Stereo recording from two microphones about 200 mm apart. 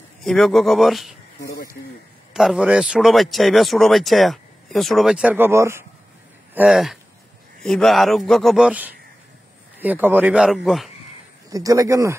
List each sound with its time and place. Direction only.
0.2 s speech: centre (ahead or behind)
2.3 s speech: centre (ahead or behind)
11.5 s speech: 15° right (ahead or behind)